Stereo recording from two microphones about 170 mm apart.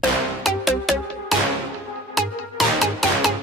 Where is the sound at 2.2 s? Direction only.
Centre (ahead or behind).